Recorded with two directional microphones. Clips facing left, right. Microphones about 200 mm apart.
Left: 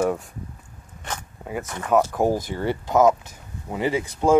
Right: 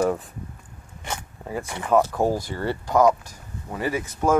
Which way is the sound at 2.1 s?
15° left (ahead or behind).